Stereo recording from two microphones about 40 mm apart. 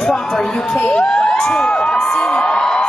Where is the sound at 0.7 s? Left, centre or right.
Left.